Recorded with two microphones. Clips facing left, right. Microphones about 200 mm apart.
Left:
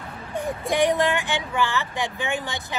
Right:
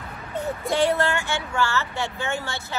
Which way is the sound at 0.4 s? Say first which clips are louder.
Left 1 dB; 15° left (ahead or behind).